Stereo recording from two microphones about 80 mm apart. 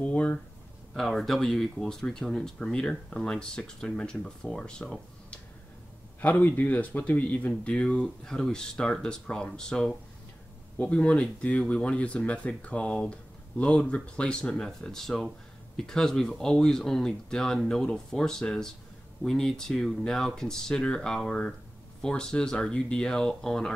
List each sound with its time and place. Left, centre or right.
0.0 s speech: centre
0.9 s speech: centre
6.2 s speech: left